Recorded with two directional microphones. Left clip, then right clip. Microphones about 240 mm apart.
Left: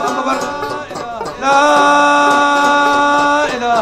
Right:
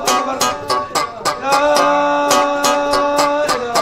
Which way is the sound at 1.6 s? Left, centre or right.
Left.